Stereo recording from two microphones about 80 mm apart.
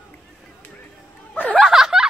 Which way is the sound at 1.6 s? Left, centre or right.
Centre.